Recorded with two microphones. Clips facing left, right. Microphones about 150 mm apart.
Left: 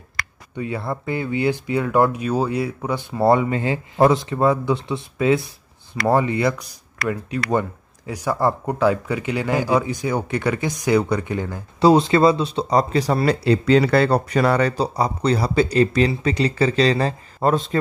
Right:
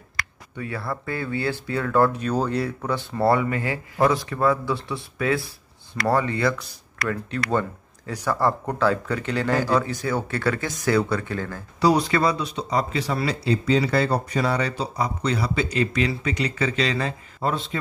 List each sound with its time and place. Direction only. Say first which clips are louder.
0.6 s speech: left 4 dB; 20° left (ahead or behind); by 14.7 s 60° left (ahead or behind)
14.8 s speech: left 5 dB; 35° left (ahead or behind)